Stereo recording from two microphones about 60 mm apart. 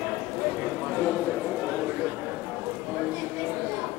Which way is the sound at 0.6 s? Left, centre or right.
Centre.